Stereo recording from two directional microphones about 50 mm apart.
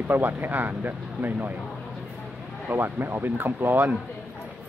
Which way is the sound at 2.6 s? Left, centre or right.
Right.